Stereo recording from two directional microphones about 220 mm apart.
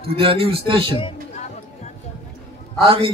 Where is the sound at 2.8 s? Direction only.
25° right (ahead or behind).